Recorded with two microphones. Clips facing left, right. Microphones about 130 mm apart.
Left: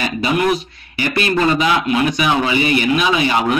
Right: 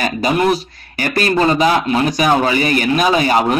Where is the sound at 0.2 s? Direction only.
35° right (ahead or behind).